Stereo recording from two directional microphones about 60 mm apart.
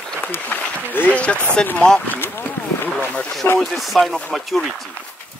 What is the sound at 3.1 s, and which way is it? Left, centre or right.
Speech, centre.